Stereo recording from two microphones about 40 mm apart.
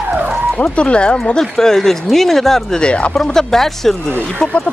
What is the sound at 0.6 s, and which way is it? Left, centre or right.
Speech, left.